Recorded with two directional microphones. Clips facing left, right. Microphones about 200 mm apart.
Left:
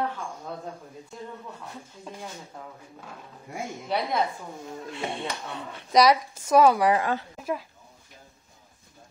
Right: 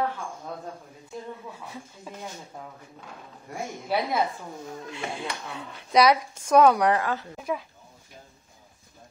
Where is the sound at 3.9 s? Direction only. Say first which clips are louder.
Right 1 dB; 5° right (ahead or behind).